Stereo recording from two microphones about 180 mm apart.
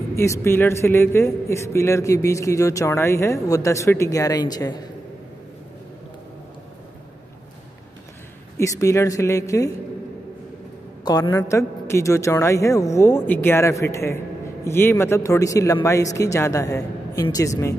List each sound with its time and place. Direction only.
0.1 s a man's voice: 15° left (ahead or behind)
8.5 s a man's voice: 15° left (ahead or behind)
11.1 s a man's voice: 20° left (ahead or behind)